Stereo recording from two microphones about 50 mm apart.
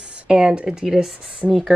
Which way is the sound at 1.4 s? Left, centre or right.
Centre.